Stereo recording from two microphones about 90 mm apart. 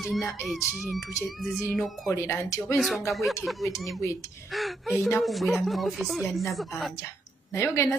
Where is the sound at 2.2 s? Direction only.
30° left (ahead or behind).